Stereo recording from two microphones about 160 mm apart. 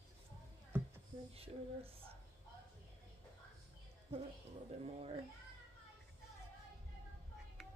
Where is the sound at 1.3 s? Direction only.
40° right (ahead or behind).